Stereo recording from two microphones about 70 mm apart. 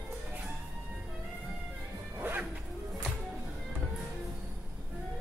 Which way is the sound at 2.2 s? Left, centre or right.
Right.